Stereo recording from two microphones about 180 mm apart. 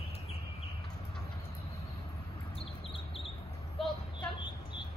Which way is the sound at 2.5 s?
30° left (ahead or behind).